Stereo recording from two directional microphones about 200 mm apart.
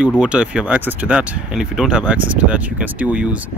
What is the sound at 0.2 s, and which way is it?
Speech, 5° right (ahead or behind).